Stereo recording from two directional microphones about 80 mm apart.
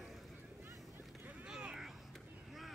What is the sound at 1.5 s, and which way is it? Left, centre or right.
Vehicle, centre.